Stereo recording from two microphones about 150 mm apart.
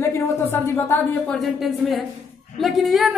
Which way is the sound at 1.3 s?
Centre (ahead or behind).